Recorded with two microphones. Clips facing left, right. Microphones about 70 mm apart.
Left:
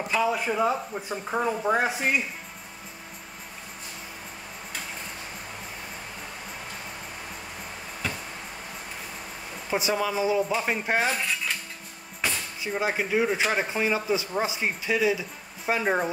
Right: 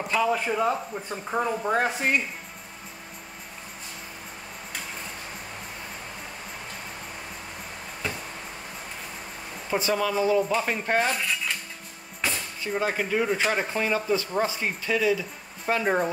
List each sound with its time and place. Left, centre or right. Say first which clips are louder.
0.1 s speech: right 1 dB; centre
9.7 s speech: right 1 dB; centre